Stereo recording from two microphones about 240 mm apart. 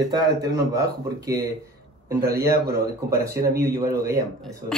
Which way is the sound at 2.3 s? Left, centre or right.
Right.